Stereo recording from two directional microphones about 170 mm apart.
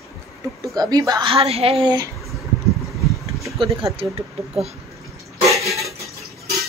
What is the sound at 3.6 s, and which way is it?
Speech, 30° right (ahead or behind).